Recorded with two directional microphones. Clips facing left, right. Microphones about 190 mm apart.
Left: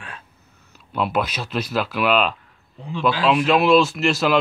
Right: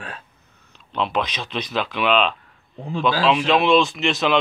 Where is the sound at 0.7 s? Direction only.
10° left (ahead or behind).